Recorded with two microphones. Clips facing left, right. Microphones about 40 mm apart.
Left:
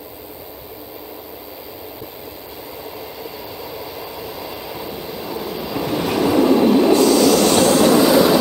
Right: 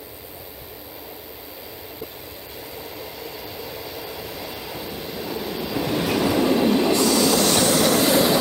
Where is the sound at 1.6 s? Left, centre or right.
Centre.